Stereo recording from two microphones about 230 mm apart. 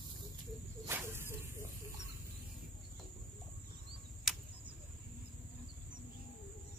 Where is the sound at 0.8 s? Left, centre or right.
Centre.